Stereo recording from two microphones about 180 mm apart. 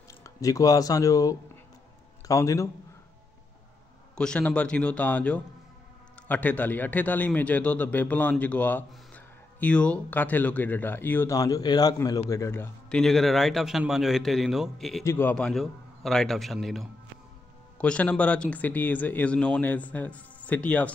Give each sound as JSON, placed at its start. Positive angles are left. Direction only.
{"t": 0.2, "sound": "a man's voice", "side_deg": 20}
{"t": 4.1, "sound": "a man's voice", "side_deg": 5}
{"t": 13.0, "sound": "a man's voice", "side_deg": 0}
{"t": 15.0, "sound": "a man's voice", "side_deg": 10}